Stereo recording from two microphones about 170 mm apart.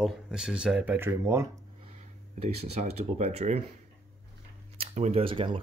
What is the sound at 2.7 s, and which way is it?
Speech, 40° right (ahead or behind).